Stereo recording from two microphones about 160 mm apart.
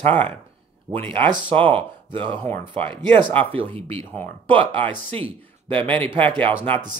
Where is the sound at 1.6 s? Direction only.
35° right (ahead or behind).